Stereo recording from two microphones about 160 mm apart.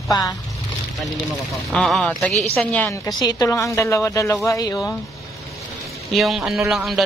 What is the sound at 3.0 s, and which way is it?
Speech, 25° left (ahead or behind).